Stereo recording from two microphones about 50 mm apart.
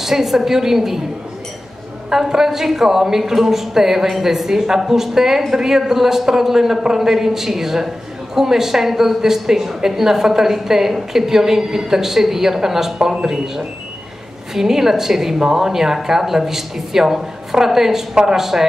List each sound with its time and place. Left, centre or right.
0.0 s a woman's voice: centre
2.0 s a woman's voice: centre